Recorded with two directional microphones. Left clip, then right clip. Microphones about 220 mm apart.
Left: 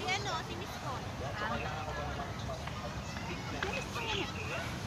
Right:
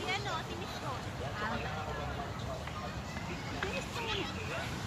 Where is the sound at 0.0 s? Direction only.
45° left (ahead or behind).